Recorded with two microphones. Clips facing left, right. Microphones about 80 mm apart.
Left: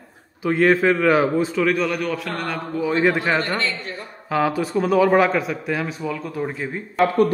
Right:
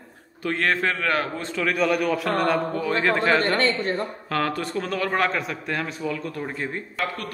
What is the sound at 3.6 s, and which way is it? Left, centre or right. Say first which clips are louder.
Speech: right 4 dB; right.